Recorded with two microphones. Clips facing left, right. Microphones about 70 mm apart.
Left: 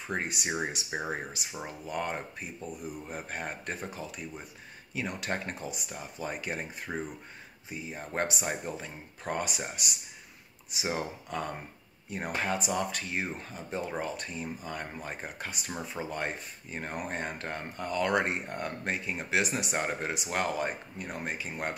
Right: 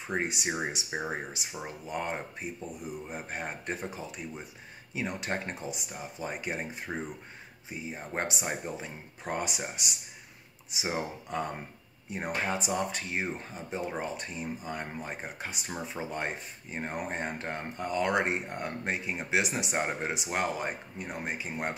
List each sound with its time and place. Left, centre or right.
0.1 s speech: right
0.8 s speech: centre
1.9 s speech: centre
7.7 s speech: centre